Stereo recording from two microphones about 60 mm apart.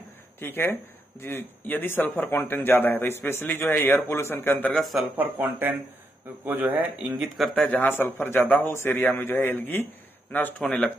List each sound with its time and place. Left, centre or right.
0.4 s a man's voice: left
4.7 s speech: centre
5.1 s speech: right
7.2 s speech: centre
7.9 s a man's voice: left
8.4 s a man's voice: left
10.6 s speech: centre